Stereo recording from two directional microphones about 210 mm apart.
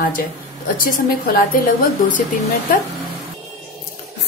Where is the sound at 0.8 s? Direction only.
45° left (ahead or behind).